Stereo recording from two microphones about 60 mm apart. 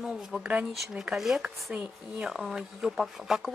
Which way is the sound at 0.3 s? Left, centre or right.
Centre.